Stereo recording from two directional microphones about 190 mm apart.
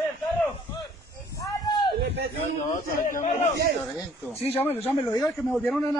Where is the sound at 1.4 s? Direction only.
25° left (ahead or behind).